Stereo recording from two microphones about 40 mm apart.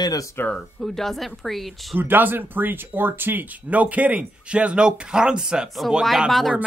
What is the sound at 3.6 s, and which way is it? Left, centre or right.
Speech, right.